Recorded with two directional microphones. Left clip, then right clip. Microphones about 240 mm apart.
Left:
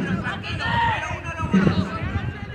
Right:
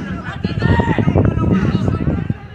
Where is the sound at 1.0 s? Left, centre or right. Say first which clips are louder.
Right 10 dB; left.